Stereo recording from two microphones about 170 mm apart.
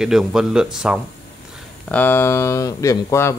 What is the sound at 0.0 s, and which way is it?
Speech, centre (ahead or behind).